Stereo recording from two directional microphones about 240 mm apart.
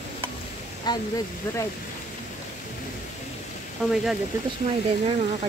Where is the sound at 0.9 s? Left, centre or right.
Centre.